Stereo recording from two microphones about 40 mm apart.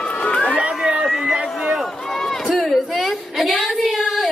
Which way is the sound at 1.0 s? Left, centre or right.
Centre.